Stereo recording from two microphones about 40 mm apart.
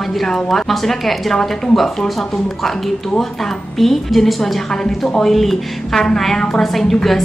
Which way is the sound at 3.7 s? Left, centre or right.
Centre.